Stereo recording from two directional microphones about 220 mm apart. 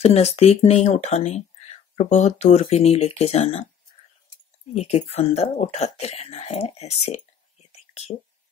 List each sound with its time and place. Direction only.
0.0 s speech: 30° left (ahead or behind)
4.7 s speech: 30° left (ahead or behind)